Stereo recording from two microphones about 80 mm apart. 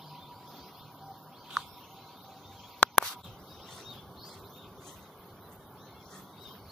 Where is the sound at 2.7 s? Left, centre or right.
Centre.